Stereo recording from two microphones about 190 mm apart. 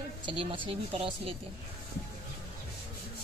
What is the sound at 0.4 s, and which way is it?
Speech, 30° right (ahead or behind).